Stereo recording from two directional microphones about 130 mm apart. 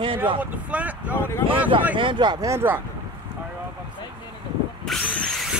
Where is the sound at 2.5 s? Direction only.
15° right (ahead or behind).